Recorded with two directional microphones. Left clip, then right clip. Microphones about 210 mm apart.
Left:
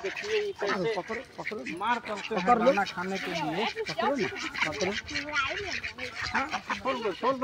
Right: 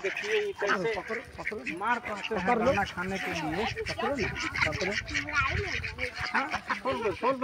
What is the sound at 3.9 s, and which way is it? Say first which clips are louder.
Speech: left 4 dB; 40° left (ahead or behind).